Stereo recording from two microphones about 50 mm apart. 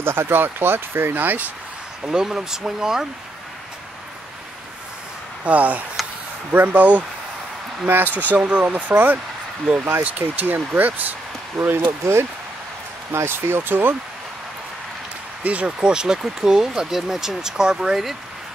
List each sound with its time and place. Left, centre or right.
0.0 s speech: right
2.0 s speech: centre
5.4 s speech: right
15.4 s speech: right